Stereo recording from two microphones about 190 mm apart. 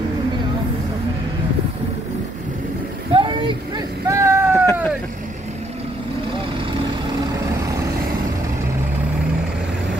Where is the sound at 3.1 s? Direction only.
25° right (ahead or behind).